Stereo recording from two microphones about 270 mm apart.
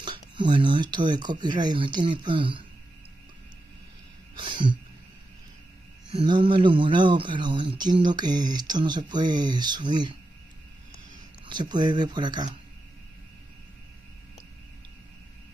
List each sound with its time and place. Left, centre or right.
0.0 s speech: centre
4.4 s a sound: centre
6.1 s speech: centre
11.4 s speech: centre